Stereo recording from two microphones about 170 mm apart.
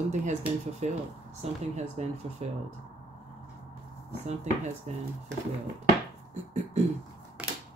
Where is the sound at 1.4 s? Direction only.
40° right (ahead or behind).